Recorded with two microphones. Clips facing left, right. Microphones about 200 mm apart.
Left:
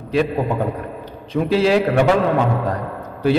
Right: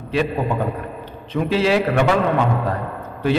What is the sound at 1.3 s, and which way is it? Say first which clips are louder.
Speech: left 2 dB; 40° left (ahead or behind).